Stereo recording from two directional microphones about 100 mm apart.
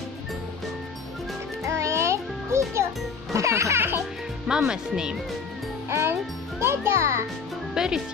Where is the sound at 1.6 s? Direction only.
30° right (ahead or behind).